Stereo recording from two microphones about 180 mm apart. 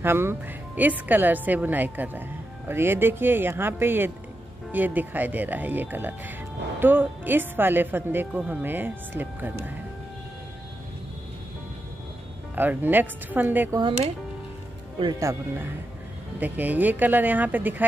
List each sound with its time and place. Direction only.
0.0 s speech: 15° right (ahead or behind)
12.5 s speech: 10° right (ahead or behind)
13.7 s speech: 25° right (ahead or behind)
16.3 s speech: 10° right (ahead or behind)